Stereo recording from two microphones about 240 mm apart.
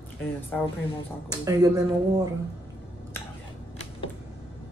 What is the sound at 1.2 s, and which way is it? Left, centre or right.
Speech, centre.